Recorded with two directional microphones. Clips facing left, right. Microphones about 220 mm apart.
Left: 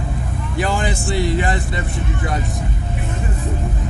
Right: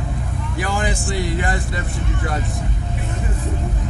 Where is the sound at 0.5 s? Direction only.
25° left (ahead or behind).